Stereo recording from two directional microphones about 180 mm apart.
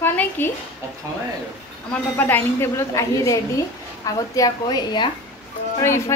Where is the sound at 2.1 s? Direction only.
10° left (ahead or behind).